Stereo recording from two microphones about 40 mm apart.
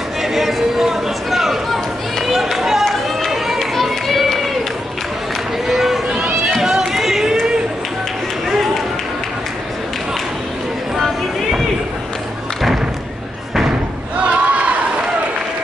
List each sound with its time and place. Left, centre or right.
0.2 s a sound: centre
5.7 s run: centre
14.3 s crowd: right